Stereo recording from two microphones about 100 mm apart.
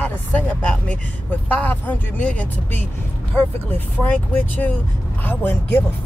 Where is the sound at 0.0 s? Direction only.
15° left (ahead or behind).